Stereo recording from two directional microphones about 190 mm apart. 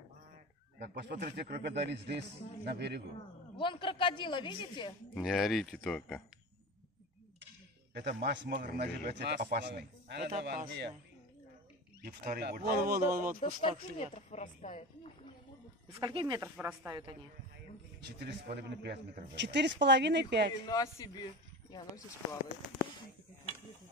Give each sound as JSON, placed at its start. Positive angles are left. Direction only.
{"t": 0.7, "sound": "a man's voice", "side_deg": -60}
{"t": 3.5, "sound": "speech", "side_deg": 25}
{"t": 5.1, "sound": "speech", "side_deg": 0}
{"t": 7.9, "sound": "a man's voice", "side_deg": -55}
{"t": 8.3, "sound": "speech", "side_deg": -65}
{"t": 8.5, "sound": "a man's voice", "side_deg": -55}
{"t": 12.0, "sound": "speech", "side_deg": -50}
{"t": 13.9, "sound": "speech", "side_deg": 35}
{"t": 15.9, "sound": "speech", "side_deg": -25}
{"t": 16.3, "sound": "speech", "side_deg": -10}
{"t": 18.0, "sound": "a man's voice", "side_deg": -60}
{"t": 20.6, "sound": "speech", "side_deg": 20}